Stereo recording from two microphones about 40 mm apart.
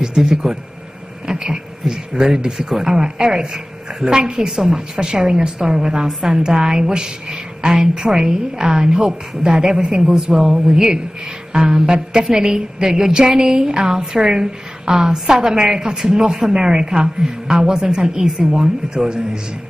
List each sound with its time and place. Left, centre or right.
0.0 s a woman's voice: centre